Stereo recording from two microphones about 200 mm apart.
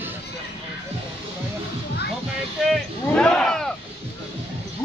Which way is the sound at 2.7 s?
5° left (ahead or behind).